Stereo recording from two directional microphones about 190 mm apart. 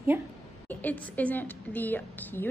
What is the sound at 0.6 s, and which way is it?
A woman's voice, 10° left (ahead or behind).